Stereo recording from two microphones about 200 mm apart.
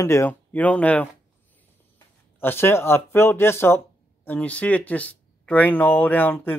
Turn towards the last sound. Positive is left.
turn(degrees=10)  # may be behind; listen again after turning